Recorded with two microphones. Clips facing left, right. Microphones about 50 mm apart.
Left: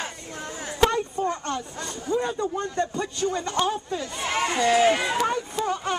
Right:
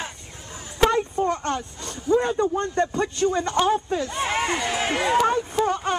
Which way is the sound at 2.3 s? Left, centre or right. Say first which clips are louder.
Right 5 dB; right.